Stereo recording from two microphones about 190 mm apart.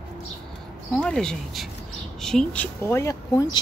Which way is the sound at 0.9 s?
5° left (ahead or behind).